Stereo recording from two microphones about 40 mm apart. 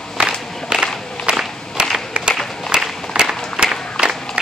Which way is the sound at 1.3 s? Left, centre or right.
Right.